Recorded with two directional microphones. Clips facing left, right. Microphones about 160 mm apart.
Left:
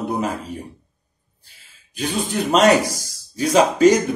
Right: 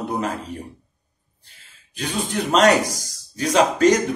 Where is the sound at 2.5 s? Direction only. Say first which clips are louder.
Left 1 dB; 10° left (ahead or behind).